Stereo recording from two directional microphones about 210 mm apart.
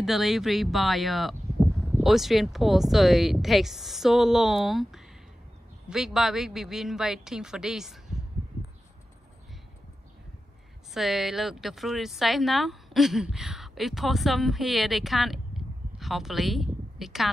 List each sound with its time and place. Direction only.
0.0 s speech: centre (ahead or behind)
10.9 s speech: centre (ahead or behind)